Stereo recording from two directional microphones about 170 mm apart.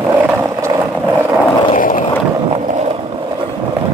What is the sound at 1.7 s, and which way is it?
Skateboard, 50° left (ahead or behind).